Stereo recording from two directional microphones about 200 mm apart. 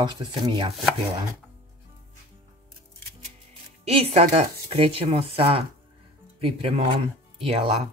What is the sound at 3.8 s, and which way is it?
Speech, 35° right (ahead or behind).